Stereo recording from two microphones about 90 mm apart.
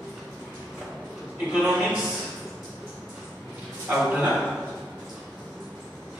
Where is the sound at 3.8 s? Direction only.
10° right (ahead or behind).